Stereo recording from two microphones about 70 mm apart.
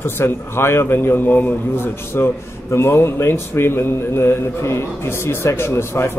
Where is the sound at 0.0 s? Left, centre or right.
Left.